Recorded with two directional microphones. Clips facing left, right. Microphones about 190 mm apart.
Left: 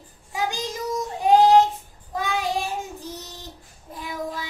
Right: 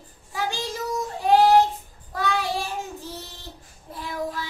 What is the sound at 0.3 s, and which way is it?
Child singing, 15° left (ahead or behind).